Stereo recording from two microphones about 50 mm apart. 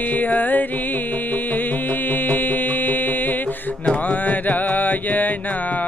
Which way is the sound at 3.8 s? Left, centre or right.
Left.